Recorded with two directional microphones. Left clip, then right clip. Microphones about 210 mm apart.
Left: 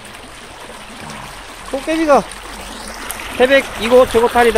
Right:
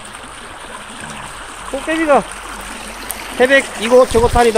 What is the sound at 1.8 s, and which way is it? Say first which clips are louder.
Speech: even; 10° left (ahead or behind).